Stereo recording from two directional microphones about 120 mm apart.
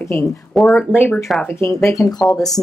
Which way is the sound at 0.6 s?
Centre (ahead or behind).